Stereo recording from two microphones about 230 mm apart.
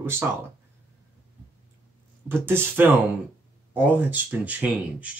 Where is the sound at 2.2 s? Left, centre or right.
Centre.